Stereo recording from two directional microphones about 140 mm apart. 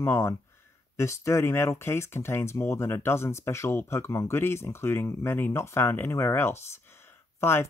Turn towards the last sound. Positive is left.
turn(degrees=15)  # may be behind; listen again after turning